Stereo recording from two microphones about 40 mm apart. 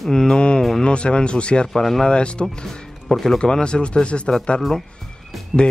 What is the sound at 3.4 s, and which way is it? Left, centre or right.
Speech, left.